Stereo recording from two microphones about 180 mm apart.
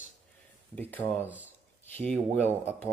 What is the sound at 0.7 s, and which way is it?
Speech, 10° left (ahead or behind).